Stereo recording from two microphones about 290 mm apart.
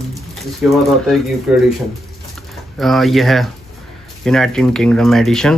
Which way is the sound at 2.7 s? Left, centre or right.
Centre.